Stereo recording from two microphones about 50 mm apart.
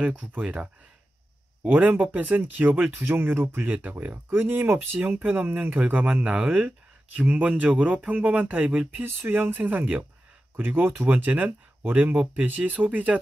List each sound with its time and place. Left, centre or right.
0.0 s speech: right
1.7 s speech: right
3.0 s speech: right
6.2 s speech: right
7.2 s speech: right
9.0 s speech: right